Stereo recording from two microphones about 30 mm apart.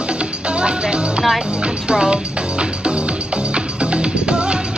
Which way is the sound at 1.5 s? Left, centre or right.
Right.